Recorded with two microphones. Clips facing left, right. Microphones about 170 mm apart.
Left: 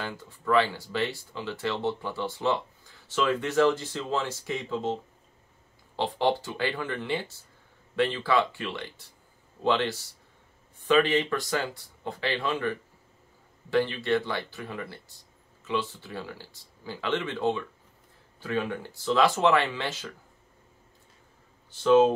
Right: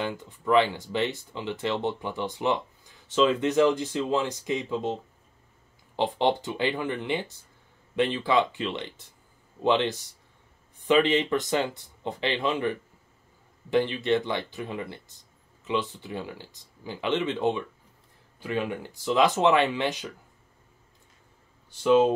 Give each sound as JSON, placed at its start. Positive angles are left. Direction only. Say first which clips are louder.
{"t": 0.0, "sound": "speech", "louder": "right 4 dB", "side_deg": -20}
{"t": 5.9, "sound": "speech", "louder": "right 1 dB", "side_deg": -20}
{"t": 21.8, "sound": "speech", "louder": "left 1 dB", "side_deg": -15}